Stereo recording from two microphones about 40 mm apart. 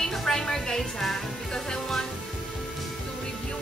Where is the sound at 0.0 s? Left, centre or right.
Centre.